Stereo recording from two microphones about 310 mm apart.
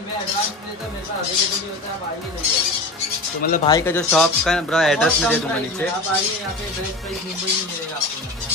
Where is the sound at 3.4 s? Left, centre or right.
Left.